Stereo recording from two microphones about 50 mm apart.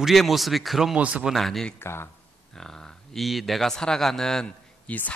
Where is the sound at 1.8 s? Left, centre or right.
Left.